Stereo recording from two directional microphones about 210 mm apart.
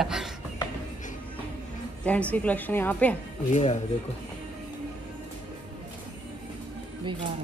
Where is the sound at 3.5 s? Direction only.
35° left (ahead or behind).